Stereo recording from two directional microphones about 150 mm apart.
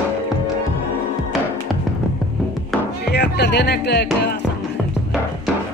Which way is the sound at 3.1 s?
90° left.